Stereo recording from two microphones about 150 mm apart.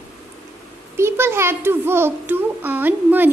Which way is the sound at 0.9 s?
15° right (ahead or behind).